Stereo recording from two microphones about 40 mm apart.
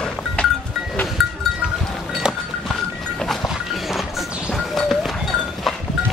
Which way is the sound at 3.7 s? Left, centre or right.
Centre.